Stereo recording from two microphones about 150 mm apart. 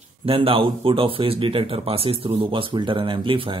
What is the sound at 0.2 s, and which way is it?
Speech, 40° right (ahead or behind).